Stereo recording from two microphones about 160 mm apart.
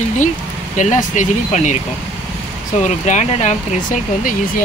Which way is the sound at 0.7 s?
50° left (ahead or behind).